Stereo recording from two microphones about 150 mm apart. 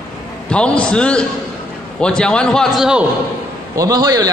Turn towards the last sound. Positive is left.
turn(degrees=-25)  # may be behind; listen again after turning